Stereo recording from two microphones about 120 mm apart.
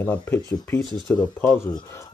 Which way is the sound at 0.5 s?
25° left (ahead or behind).